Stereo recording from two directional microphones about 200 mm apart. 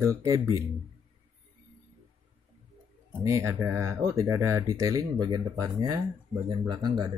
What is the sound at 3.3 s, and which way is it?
Speech, 15° right (ahead or behind).